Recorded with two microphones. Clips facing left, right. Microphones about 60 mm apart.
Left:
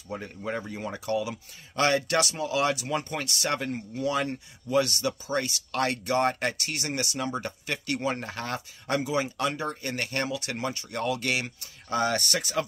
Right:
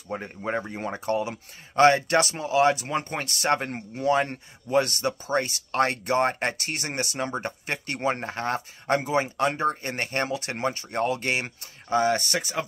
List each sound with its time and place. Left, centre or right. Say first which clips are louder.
0.1 s speech: right 3 dB; right
11.9 s speech: right 4 dB; right